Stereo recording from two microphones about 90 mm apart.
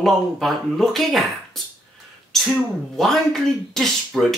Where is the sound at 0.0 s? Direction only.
Centre (ahead or behind).